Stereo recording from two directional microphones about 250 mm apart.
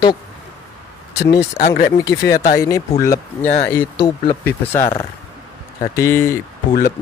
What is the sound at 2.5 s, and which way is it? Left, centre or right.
Speech, centre.